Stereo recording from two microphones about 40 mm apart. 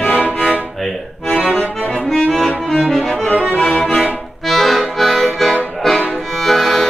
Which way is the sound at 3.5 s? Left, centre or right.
Left.